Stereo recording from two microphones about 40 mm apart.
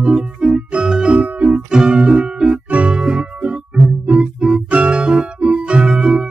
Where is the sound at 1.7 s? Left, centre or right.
Centre.